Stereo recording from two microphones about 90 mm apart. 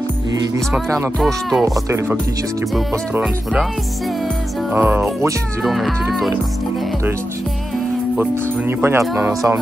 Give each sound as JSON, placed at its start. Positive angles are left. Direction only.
{"t": 0.8, "sound": "speech", "side_deg": -35}
{"t": 1.2, "sound": "speech", "side_deg": 0}
{"t": 2.7, "sound": "music", "side_deg": -5}
{"t": 4.7, "sound": "speech", "side_deg": -20}
{"t": 5.6, "sound": "speech", "side_deg": 0}
{"t": 8.2, "sound": "speech", "side_deg": -25}
{"t": 9.0, "sound": "speech", "side_deg": -5}